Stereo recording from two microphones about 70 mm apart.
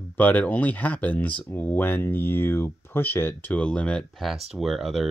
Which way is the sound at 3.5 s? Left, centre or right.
Centre.